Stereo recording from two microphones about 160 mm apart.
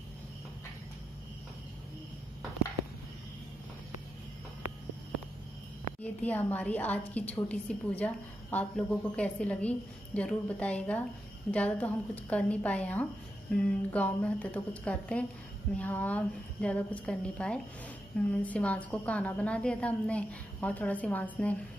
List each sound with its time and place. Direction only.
6.2 s a woman's voice: 10° left (ahead or behind)